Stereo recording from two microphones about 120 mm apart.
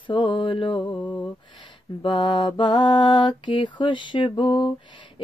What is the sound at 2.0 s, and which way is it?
Female singing, 40° left (ahead or behind).